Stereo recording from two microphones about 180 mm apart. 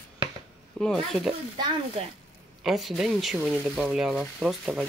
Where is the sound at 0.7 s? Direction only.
Centre (ahead or behind).